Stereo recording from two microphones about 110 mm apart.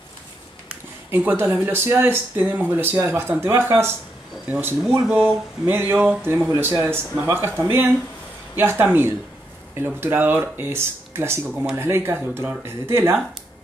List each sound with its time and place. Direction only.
0.7 s speech: 15° right (ahead or behind)